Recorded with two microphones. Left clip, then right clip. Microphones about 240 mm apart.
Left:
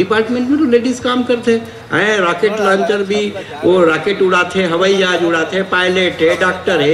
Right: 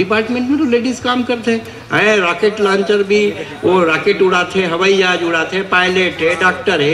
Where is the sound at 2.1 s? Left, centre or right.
Right.